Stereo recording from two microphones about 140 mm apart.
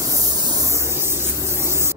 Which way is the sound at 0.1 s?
25° right (ahead or behind).